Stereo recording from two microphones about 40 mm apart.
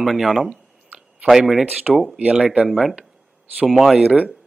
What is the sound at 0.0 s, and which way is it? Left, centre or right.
A man's voice, centre.